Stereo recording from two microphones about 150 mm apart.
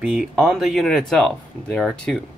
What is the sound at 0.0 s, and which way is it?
Speech, 5° right (ahead or behind).